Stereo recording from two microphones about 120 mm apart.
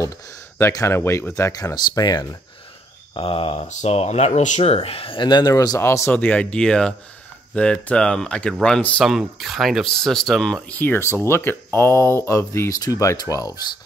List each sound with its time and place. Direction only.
0.6 s speech: 20° left (ahead or behind)
3.2 s speech: 50° left (ahead or behind)
3.6 s speech: 75° left (ahead or behind)
4.8 s speech: 50° left (ahead or behind); by 10.6 s centre (ahead or behind)
10.7 s speech: 15° left (ahead or behind); by 13.7 s 30° left (ahead or behind)